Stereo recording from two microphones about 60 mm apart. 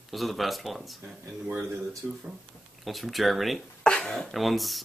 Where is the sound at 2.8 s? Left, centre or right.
Centre.